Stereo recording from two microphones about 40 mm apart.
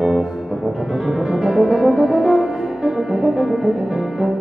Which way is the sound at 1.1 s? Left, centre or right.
Centre.